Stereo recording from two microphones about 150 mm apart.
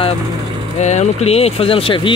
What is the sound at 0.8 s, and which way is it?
Speech, 50° left (ahead or behind).